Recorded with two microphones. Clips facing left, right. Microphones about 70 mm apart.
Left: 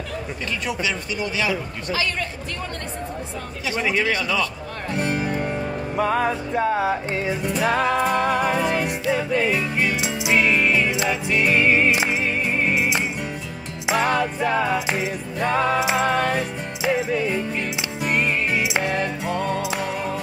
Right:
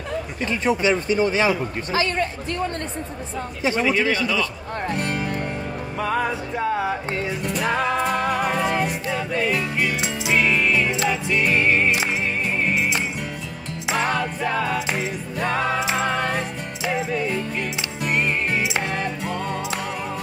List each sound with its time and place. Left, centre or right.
0.5 s a man's voice: right
4.1 s a man's voice: left
4.9 s music: centre
14.0 s music: centre
15.8 s music: centre
18.6 s music: centre
18.9 s music: centre